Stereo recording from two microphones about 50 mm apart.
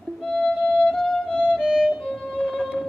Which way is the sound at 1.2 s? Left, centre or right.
Left.